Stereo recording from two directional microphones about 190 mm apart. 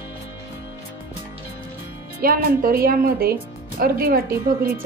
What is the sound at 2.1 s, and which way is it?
Speech, 50° right (ahead or behind).